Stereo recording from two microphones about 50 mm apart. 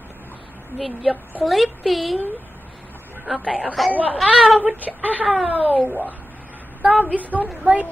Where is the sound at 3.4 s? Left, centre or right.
Right.